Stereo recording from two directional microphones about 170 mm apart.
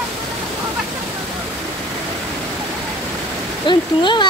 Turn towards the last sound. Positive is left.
turn(degrees=25)  # may be behind; listen again after turning